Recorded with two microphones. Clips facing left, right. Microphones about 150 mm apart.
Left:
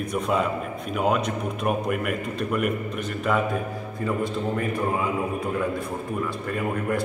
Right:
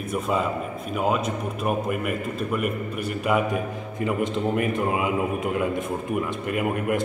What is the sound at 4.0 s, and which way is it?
A man's voice, 20° right (ahead or behind).